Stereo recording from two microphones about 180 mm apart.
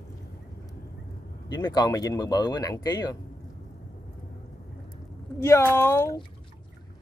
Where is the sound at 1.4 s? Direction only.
25° left (ahead or behind).